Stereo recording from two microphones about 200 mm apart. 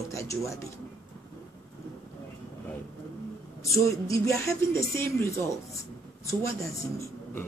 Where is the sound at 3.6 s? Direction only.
15° left (ahead or behind).